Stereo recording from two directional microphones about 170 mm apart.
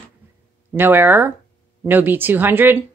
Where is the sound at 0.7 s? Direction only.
10° right (ahead or behind).